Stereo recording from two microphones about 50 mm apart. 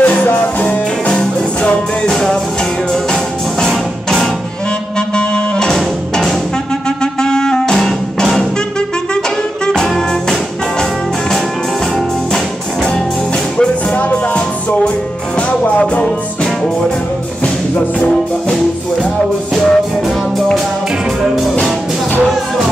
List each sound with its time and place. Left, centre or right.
0.0 s music: left
2.0 s music: centre
9.7 s music: centre
13.9 s music: left
19.5 s music: centre